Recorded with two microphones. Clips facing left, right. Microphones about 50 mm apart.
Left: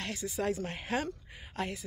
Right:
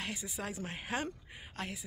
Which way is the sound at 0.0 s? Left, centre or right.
Centre.